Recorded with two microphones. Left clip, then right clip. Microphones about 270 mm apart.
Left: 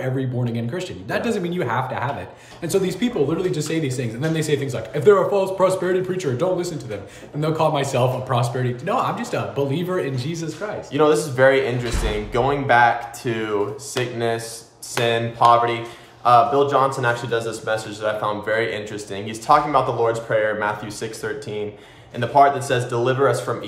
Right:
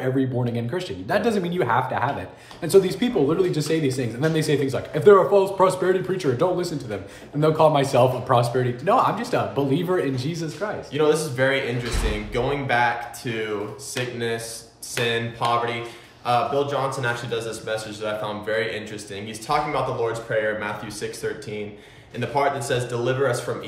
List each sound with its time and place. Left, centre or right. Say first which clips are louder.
0.0 s speech: right 2 dB; centre
10.9 s a man's voice: left 4 dB; centre